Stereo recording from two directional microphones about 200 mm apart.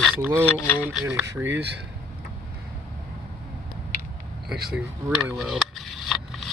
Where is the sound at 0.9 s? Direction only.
5° right (ahead or behind).